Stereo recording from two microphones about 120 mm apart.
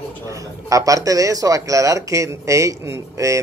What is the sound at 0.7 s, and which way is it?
Speech, 30° right (ahead or behind).